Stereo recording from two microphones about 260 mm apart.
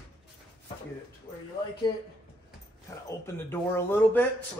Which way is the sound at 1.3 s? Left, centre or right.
Left.